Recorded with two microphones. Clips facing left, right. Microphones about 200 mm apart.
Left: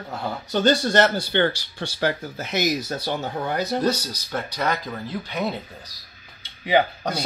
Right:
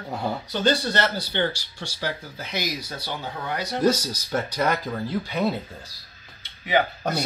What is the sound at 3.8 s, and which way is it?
Speech, 10° right (ahead or behind).